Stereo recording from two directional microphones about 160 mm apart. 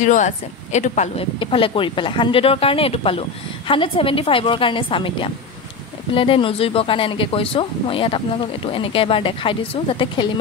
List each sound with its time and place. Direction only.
0.0 s speech: 50° left (ahead or behind)
1.4 s speech: 35° left (ahead or behind)